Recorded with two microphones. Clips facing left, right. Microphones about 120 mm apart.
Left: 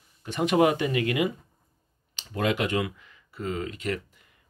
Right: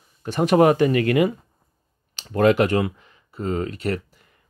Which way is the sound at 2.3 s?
50° right (ahead or behind).